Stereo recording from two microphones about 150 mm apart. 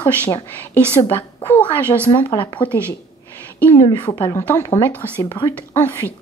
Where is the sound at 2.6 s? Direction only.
10° left (ahead or behind).